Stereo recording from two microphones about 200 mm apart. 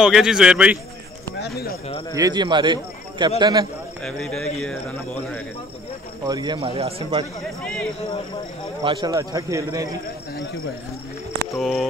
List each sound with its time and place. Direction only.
0.0 s speech: 5° right (ahead or behind)
1.4 s speech: 50° left (ahead or behind)
1.9 s speech: 25° left (ahead or behind)
2.1 s a man's voice: 20° right (ahead or behind)
4.0 s speech: centre (ahead or behind)
6.2 s a man's voice: 20° right (ahead or behind)
8.8 s a man's voice: 20° right (ahead or behind)
11.5 s speech: centre (ahead or behind)